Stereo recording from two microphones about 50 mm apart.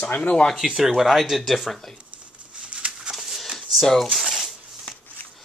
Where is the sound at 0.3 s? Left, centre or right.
Centre.